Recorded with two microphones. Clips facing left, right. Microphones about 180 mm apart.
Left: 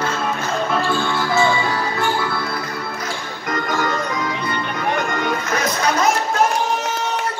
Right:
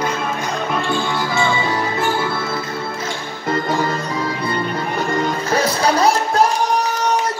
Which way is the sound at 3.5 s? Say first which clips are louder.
Right 2 dB; 30° right (ahead or behind).